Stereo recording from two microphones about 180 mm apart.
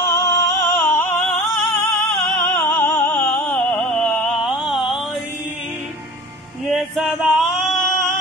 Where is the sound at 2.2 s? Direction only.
10° left (ahead or behind).